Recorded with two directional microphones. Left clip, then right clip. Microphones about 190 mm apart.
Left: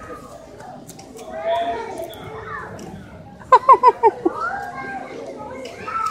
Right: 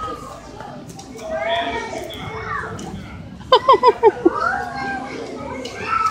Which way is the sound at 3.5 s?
5° right (ahead or behind).